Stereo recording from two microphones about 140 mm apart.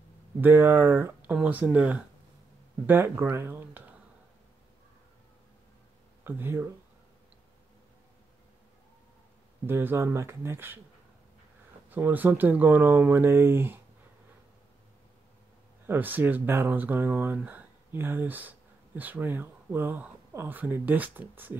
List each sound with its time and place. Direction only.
0.4 s speech: 15° right (ahead or behind)
6.2 s speech: 15° right (ahead or behind)
9.7 s speech: 15° right (ahead or behind)
11.9 s speech: 10° right (ahead or behind)
15.9 s speech: 15° right (ahead or behind)